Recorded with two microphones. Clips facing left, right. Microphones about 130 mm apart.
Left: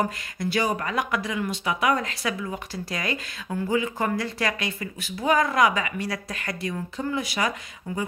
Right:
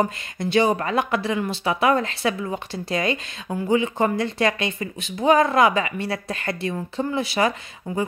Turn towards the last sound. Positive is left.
turn(degrees=-30)  # may be behind; listen again after turning